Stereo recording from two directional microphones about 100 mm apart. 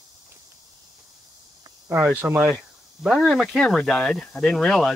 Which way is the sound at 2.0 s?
20° right (ahead or behind).